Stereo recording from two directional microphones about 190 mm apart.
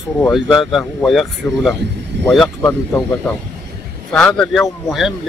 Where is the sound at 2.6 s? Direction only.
10° left (ahead or behind).